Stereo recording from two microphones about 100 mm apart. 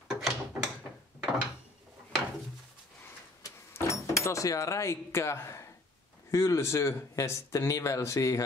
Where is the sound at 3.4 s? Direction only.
30° left (ahead or behind).